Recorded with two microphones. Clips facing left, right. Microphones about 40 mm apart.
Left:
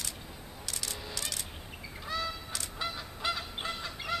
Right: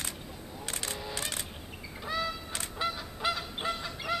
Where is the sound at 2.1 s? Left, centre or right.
Centre.